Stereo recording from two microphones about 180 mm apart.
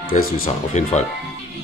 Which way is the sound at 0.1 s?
45° left (ahead or behind).